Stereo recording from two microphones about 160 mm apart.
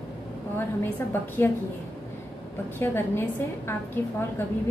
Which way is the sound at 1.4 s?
15° left (ahead or behind).